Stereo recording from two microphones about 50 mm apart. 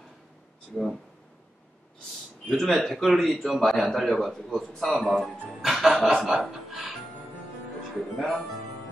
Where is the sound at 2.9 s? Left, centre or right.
Centre.